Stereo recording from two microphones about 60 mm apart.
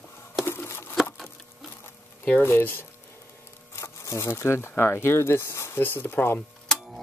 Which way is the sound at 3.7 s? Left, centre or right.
Left.